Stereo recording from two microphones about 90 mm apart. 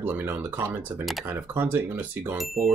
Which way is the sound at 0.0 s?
25° right (ahead or behind).